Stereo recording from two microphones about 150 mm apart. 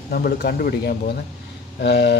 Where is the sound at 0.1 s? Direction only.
90° left.